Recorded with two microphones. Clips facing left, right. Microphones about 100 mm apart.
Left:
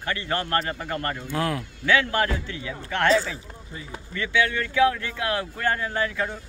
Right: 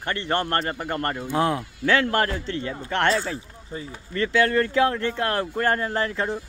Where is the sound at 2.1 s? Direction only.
45° right (ahead or behind).